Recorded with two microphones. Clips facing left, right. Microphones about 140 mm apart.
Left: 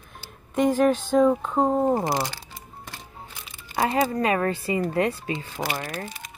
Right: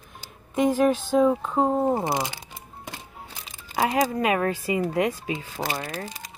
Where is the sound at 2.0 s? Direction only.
20° right (ahead or behind).